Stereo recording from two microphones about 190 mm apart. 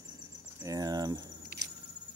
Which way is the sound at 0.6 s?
20° right (ahead or behind).